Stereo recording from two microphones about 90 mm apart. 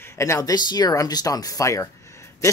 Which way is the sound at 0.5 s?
50° left (ahead or behind).